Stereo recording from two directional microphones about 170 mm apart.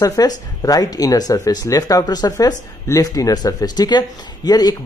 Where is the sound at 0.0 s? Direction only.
20° left (ahead or behind).